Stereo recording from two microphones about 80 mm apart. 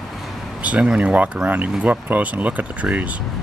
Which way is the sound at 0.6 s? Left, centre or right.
Centre.